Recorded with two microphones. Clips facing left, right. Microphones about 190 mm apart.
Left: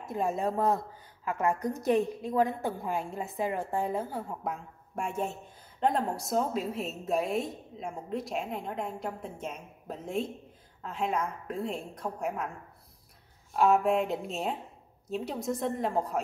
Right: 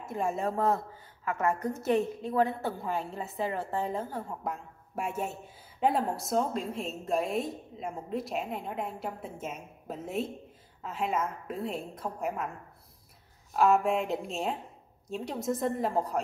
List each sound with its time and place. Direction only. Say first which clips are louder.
0.0 s a woman's voice: left 1 dB; 15° left (ahead or behind)
4.9 s a woman's voice: left 1 dB; 5° right (ahead or behind)
13.5 s a woman's voice: even; centre (ahead or behind)